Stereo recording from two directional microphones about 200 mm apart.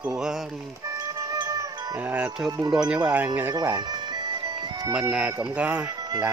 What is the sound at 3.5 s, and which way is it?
Music, 15° right (ahead or behind).